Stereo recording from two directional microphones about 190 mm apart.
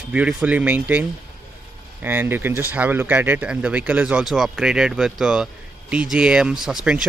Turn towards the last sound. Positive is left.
turn(degrees=-5)  # may be behind; listen again after turning